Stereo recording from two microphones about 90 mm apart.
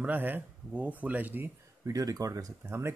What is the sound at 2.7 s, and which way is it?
Speech, 30° right (ahead or behind).